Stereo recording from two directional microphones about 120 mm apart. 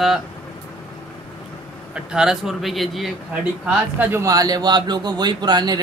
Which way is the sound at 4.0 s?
20° right (ahead or behind).